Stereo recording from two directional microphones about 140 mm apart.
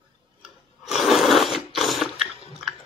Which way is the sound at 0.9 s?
Centre (ahead or behind).